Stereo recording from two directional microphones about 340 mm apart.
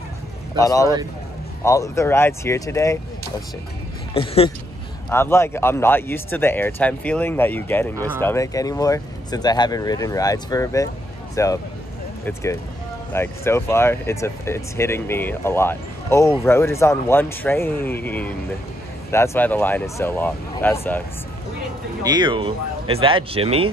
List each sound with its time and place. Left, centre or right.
0.6 s speech: centre
4.1 s speech: centre
13.1 s speech: centre
22.0 s speech: centre